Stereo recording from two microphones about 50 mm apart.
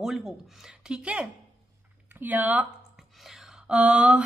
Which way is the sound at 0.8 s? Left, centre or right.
Right.